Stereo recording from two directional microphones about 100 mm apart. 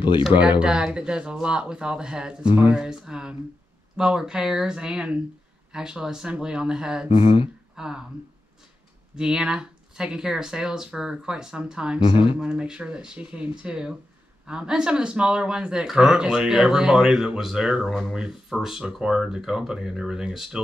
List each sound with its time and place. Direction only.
0.3 s speech: 15° right (ahead or behind)
7.2 s speech: 70° left (ahead or behind)
7.7 s speech: 5° right (ahead or behind)
9.1 s speech: 10° right (ahead or behind)
12.1 s speech: 55° left (ahead or behind)
12.4 s speech: 10° right (ahead or behind)